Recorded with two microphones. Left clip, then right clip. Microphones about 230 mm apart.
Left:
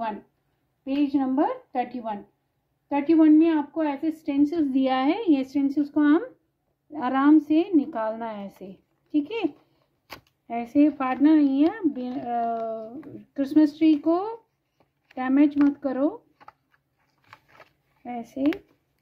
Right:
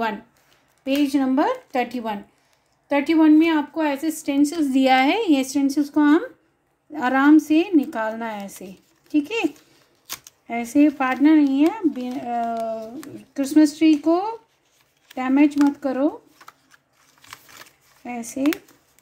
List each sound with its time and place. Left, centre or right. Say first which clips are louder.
0.8 s a woman's voice: right 4 dB; right; by 16.1 s centre
18.0 s a woman's voice: right 3 dB; centre